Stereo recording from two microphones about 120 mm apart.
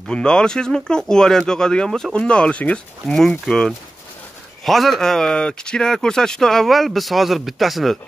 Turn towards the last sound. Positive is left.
turn(degrees=0)  # may be behind; listen again after turning